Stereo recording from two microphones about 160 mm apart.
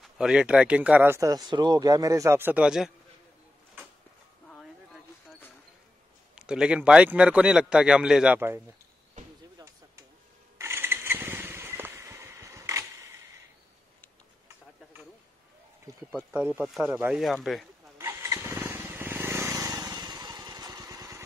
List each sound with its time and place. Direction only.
0.0 s speech: 5° right (ahead or behind)
6.3 s a man's voice: 5° right (ahead or behind)
9.2 s basketball bounce: 50° right (ahead or behind)
10.6 s vehicle: 15° right (ahead or behind)
16.3 s a man's voice: 10° right (ahead or behind)
17.9 s vehicle: 15° right (ahead or behind)